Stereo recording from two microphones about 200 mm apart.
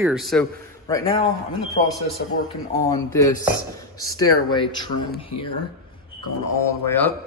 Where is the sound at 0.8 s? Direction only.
15° left (ahead or behind).